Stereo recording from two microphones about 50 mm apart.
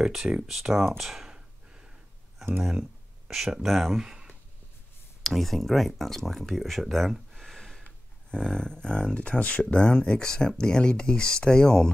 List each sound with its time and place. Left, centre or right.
0.0 s speech: centre
1.3 s a sound: centre
3.5 s speech: centre
5.2 s speech: centre
7.4 s a sound: centre
7.8 s speech: centre